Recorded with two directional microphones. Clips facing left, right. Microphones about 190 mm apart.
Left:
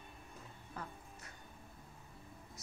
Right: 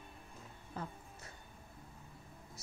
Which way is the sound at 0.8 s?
25° right (ahead or behind).